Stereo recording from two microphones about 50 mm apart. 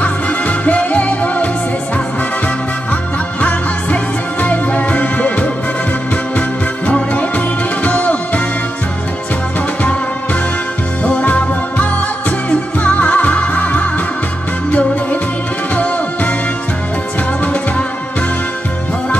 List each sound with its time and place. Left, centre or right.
0.0 s music: left
2.9 s music: left
6.9 s music: left
11.1 s music: left